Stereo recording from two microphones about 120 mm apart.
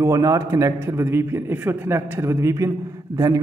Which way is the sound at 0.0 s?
25° right (ahead or behind).